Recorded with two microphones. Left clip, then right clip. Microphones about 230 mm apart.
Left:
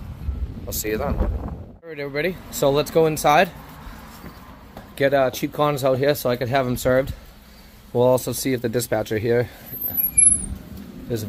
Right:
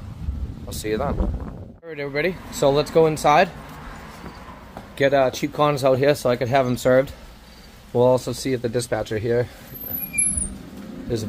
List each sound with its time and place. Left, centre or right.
0.7 s speech: centre
1.9 s speech: centre
4.9 s speech: centre
7.9 s speech: centre